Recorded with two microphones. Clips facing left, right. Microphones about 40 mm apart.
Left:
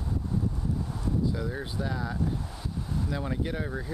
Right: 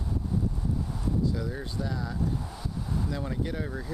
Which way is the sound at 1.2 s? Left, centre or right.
Centre.